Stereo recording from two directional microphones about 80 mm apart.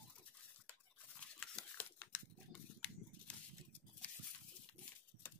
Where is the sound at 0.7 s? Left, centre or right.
Centre.